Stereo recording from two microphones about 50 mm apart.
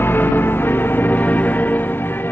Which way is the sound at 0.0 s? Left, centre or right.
Left.